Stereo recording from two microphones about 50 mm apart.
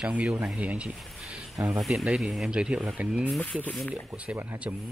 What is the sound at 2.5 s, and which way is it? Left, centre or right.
Speech, centre.